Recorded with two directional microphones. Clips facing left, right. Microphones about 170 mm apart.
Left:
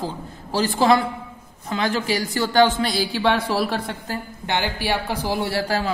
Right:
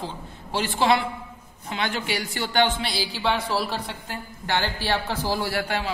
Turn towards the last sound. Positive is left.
turn(degrees=35)  # may be behind; listen again after turning